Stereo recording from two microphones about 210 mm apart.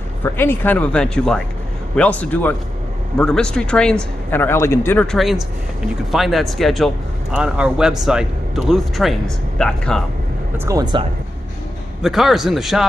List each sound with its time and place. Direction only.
0.2 s a man's voice: 10° left (ahead or behind)
10.6 s speech: 15° right (ahead or behind)
12.0 s a man's voice: centre (ahead or behind)